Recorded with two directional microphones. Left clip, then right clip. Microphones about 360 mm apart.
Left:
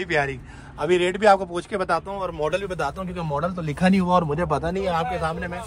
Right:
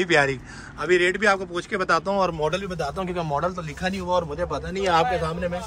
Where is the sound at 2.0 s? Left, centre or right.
Centre.